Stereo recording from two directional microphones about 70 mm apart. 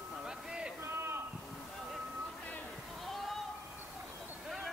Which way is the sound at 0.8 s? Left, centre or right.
Right.